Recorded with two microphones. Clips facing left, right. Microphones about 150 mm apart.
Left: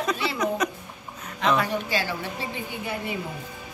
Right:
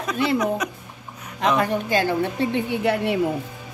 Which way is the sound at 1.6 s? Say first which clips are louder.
Right 6 dB; 50° right (ahead or behind).